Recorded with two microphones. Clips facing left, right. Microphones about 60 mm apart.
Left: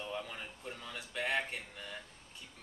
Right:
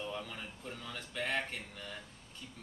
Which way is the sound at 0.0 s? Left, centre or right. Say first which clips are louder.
Even; centre.